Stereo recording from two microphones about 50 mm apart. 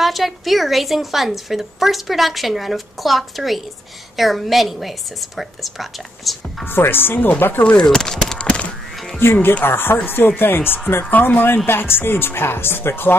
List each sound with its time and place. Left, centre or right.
0.0 s a woman's voice: centre
6.7 s speech: left
7.8 s speech: centre
8.4 s a sound: left
9.2 s speech: left